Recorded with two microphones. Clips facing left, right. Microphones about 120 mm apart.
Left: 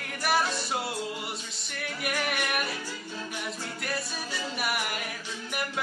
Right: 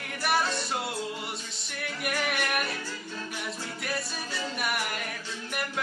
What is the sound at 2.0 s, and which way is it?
Music, centre (ahead or behind).